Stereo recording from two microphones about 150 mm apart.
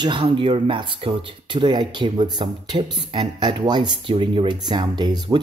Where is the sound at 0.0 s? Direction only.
35° right (ahead or behind).